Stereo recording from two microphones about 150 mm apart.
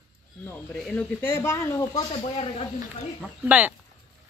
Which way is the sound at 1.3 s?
15° left (ahead or behind).